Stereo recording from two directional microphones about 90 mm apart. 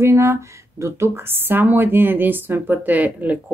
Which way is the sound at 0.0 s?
30° right (ahead or behind).